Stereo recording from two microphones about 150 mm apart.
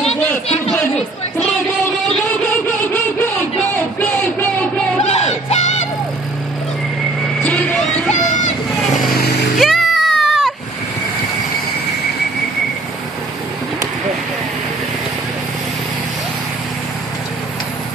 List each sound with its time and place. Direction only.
2.5 s a sound: 15° left (ahead or behind)
5.0 s music: 45° left (ahead or behind)
7.4 s music: 5° left (ahead or behind)
9.1 s vehicle: 90° left
9.6 s music: centre (ahead or behind)